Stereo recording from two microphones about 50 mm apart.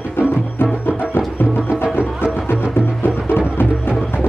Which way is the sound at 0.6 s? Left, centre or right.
Left.